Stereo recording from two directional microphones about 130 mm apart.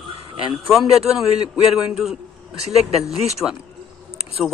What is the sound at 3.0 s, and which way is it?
Speech, 55° right (ahead or behind).